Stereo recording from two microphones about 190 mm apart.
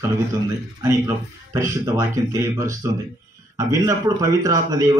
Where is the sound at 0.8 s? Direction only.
15° right (ahead or behind).